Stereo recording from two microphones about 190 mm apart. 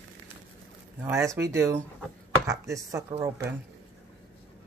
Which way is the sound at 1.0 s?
15° right (ahead or behind).